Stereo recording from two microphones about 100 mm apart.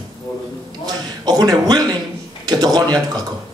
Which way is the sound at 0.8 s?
40° right (ahead or behind).